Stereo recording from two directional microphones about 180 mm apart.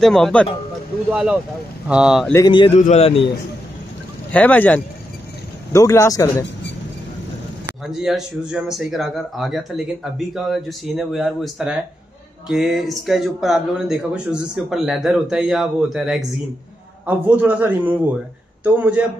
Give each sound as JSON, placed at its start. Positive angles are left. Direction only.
{"t": 0.0, "sound": "speech", "side_deg": 0}
{"t": 1.1, "sound": "a man's voice", "side_deg": -5}
{"t": 2.3, "sound": "a man's voice", "side_deg": 25}
{"t": 4.3, "sound": "a man's voice", "side_deg": 10}
{"t": 7.8, "sound": "a man's voice", "side_deg": 0}